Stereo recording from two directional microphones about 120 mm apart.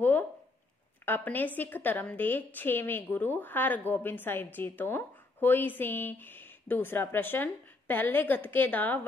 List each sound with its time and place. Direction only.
1.0 s a woman's voice: 15° left (ahead or behind)